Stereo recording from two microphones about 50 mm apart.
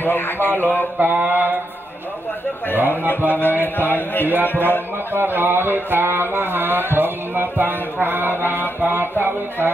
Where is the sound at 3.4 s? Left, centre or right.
Left.